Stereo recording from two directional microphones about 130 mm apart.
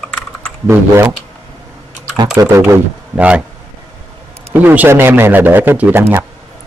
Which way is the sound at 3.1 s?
10° right (ahead or behind).